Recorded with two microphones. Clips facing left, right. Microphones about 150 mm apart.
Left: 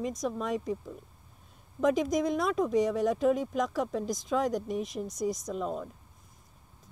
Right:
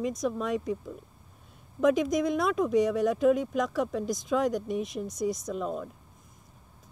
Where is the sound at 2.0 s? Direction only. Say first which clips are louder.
Right 2 dB; 5° right (ahead or behind).